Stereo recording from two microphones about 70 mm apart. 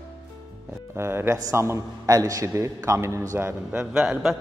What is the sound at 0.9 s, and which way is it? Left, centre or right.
Speech, right.